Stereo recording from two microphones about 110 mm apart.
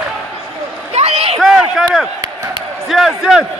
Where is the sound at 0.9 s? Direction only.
65° right (ahead or behind).